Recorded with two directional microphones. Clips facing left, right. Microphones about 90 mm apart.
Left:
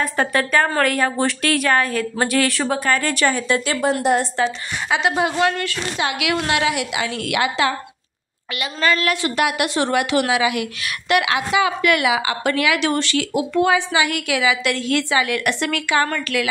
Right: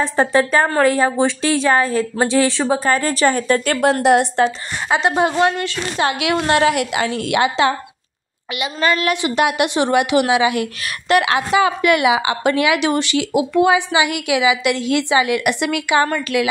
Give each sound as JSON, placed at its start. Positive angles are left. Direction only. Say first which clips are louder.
{"t": 0.0, "sound": "speech", "louder": "right 4 dB", "side_deg": -25}
{"t": 2.8, "sound": "a woman's voice", "louder": "right 2 dB", "side_deg": -35}
{"t": 4.0, "sound": "a woman's voice", "louder": "right 5 dB", "side_deg": -70}
{"t": 4.8, "sound": "a woman's voice", "louder": "right 3 dB", "side_deg": -40}
{"t": 7.2, "sound": "speech", "louder": "right 3 dB", "side_deg": -25}
{"t": 11.8, "sound": "speech", "louder": "right 3 dB", "side_deg": -25}